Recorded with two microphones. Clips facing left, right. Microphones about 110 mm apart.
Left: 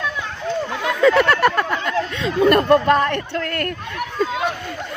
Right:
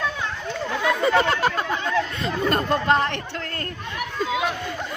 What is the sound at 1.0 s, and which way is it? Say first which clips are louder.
Speech: left 7 dB; 65° left (ahead or behind).